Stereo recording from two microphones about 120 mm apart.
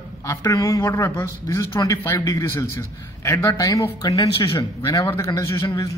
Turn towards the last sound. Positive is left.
turn(degrees=30)  # may be behind; listen again after turning